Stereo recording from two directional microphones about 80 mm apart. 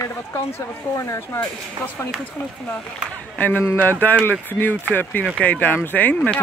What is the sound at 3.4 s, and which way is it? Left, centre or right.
A man's voice, left.